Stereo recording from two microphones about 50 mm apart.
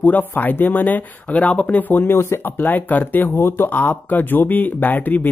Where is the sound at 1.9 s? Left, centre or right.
Left.